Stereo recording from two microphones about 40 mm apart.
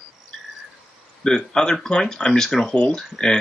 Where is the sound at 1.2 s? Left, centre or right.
Centre.